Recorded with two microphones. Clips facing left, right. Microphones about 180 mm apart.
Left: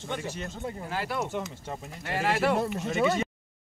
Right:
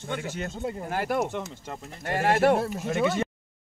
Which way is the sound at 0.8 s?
50° right (ahead or behind).